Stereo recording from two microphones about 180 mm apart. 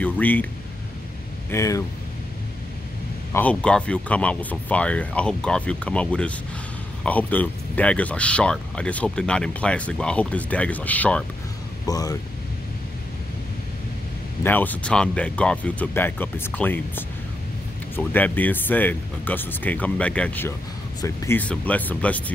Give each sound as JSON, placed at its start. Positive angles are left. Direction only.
{"t": 0.0, "sound": "speech", "side_deg": 10}
{"t": 1.5, "sound": "speech", "side_deg": 15}
{"t": 3.3, "sound": "speech", "side_deg": 5}
{"t": 11.8, "sound": "speech", "side_deg": 20}
{"t": 14.4, "sound": "speech", "side_deg": 10}